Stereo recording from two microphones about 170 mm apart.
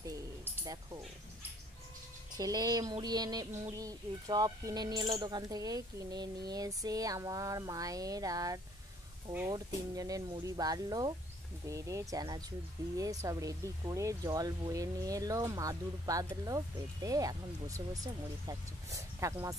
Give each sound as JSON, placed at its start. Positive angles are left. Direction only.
{"t": 2.3, "sound": "speech", "side_deg": -20}
{"t": 9.9, "sound": "speech", "side_deg": -20}